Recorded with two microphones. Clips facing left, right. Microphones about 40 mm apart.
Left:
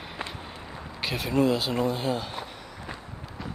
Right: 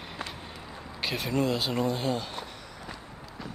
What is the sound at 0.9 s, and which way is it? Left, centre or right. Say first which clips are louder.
Speech: left 3 dB; centre.